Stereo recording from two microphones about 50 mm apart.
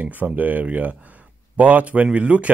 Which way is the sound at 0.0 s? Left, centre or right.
Right.